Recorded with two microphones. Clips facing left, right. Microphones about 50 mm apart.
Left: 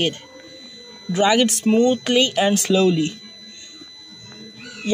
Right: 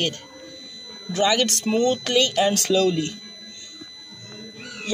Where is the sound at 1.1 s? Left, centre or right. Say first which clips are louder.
Left 4 dB; centre.